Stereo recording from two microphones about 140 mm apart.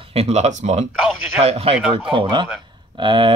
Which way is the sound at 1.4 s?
45° right (ahead or behind).